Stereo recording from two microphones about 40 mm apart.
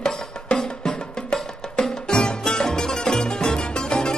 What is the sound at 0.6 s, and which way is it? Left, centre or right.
Music, centre.